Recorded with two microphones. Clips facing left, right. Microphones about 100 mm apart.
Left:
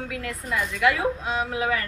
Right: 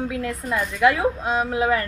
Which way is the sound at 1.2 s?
40° right (ahead or behind).